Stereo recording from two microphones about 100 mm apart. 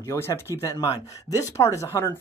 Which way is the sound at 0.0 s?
30° left (ahead or behind).